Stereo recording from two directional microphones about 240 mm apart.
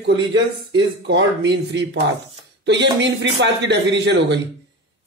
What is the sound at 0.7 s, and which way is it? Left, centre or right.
A man's voice, right.